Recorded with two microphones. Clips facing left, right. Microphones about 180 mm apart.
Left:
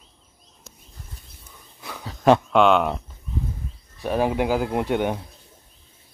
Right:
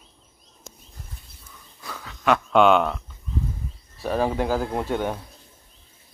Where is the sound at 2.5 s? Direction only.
Centre (ahead or behind).